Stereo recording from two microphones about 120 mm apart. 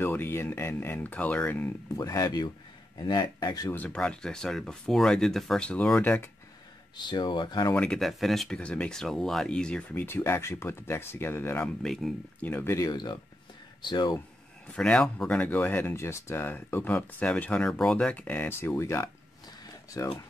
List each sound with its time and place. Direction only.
0.0 s speech: 20° left (ahead or behind)
2.0 s speech: 30° left (ahead or behind)
3.7 s speech: 10° left (ahead or behind)
7.1 s speech: 40° left (ahead or behind)
7.7 s speech: 10° left (ahead or behind)
11.6 s speech: 5° left (ahead or behind)
12.4 s speech: 20° left (ahead or behind); by 14.2 s 35° left (ahead or behind)
14.7 s speech: 10° left (ahead or behind); by 20.1 s 25° left (ahead or behind)